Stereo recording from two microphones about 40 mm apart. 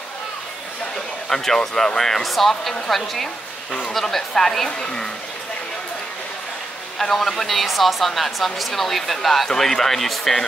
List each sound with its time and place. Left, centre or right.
1.3 s speech: centre
3.9 s speech: centre
4.6 s speech: left
7.0 s speech: centre